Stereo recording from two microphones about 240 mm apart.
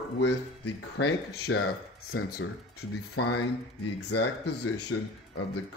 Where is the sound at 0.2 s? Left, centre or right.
Left.